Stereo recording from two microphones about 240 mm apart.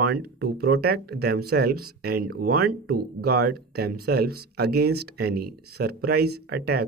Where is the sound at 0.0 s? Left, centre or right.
Right.